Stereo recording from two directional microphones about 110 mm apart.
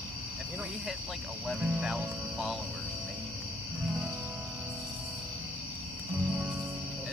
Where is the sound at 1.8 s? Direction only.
5° right (ahead or behind).